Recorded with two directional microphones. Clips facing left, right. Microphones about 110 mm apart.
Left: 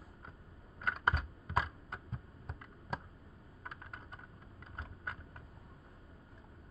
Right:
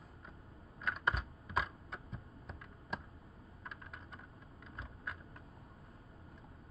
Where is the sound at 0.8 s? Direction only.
50° left (ahead or behind).